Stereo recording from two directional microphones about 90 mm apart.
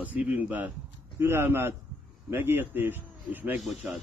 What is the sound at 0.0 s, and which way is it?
A man's voice, 15° right (ahead or behind).